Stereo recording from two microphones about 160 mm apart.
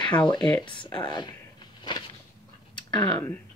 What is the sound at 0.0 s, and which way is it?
Speech, 30° left (ahead or behind).